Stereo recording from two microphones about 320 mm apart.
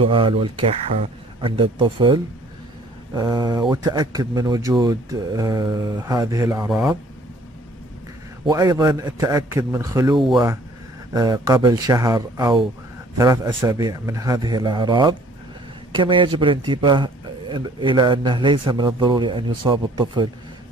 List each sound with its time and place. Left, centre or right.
0.0 s a man's voice: centre
8.5 s a man's voice: centre